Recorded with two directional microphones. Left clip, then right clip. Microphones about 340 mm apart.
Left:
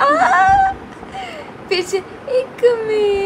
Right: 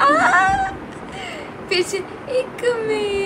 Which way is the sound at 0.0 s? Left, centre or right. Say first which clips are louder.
Left 2 dB; left.